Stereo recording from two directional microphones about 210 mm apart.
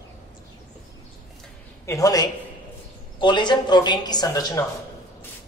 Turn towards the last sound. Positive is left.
turn(degrees=15)  # may be behind; listen again after turning